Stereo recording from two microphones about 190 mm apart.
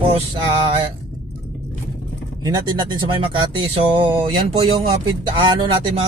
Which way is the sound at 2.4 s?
20° right (ahead or behind).